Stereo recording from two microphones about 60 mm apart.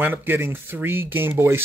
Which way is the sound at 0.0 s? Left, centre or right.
Right.